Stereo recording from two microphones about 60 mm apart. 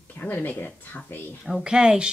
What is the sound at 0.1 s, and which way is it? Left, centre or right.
Speech, left.